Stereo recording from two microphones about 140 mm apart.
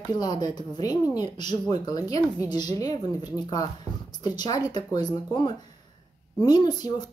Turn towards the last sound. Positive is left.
turn(degrees=30)  # may be behind; listen again after turning